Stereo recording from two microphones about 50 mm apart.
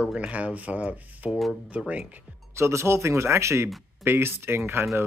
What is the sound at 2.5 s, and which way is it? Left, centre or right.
Speech, right.